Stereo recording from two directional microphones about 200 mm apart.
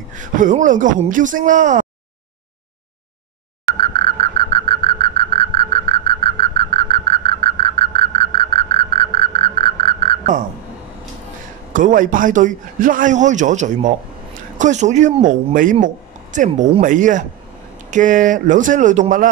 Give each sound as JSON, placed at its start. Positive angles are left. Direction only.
{"t": 0.1, "sound": "a man's voice", "side_deg": -40}
{"t": 3.7, "sound": "frog", "side_deg": 25}
{"t": 11.7, "sound": "a man's voice", "side_deg": -40}